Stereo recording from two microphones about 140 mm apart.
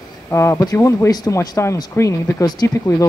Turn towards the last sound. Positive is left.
turn(degrees=20)  # may be behind; listen again after turning